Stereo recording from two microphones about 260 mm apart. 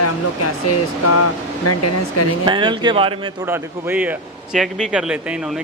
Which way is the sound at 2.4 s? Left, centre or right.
Centre.